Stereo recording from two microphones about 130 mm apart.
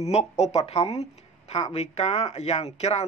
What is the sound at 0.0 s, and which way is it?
Speech, 55° left (ahead or behind).